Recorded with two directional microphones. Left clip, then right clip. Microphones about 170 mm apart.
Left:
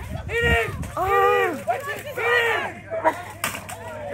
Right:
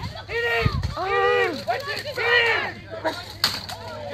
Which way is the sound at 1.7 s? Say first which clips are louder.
Even; 55° left (ahead or behind).